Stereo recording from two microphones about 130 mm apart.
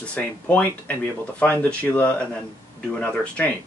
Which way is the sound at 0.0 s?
10° left (ahead or behind).